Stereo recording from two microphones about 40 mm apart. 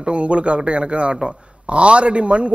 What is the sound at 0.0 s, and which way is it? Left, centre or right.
A man's voice, right.